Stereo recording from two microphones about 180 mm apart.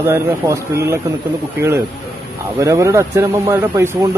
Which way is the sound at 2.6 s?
15° right (ahead or behind).